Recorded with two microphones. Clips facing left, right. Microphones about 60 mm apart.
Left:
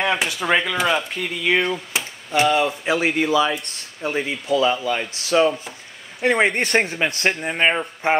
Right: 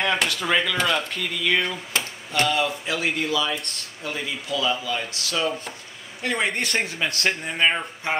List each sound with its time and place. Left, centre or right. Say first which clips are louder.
0.0 s speech: left 2 dB; centre
1.2 s speech: left 3 dB; left
1.6 s chop: left 3 dB; centre
2.4 s speech: left 4 dB; left
7.2 s speech: left 1 dB; left
8.0 s speech: left 7 dB; left